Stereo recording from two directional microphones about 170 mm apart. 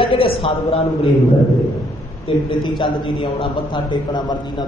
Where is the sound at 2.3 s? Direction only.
30° left (ahead or behind).